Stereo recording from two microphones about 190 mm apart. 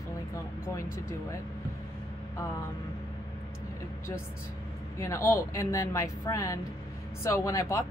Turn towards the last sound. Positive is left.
turn(degrees=15)  # may be behind; listen again after turning